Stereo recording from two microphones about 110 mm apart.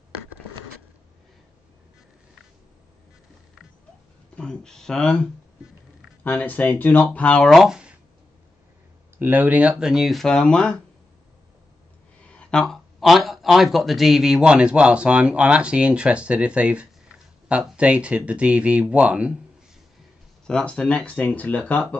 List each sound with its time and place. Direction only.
4.4 s speech: 5° left (ahead or behind)
7.4 s speech: centre (ahead or behind)
9.2 s speech: 15° right (ahead or behind); by 10.8 s 10° left (ahead or behind)
12.2 s speech: 10° left (ahead or behind); by 19.3 s 10° right (ahead or behind)
20.4 s speech: 10° left (ahead or behind)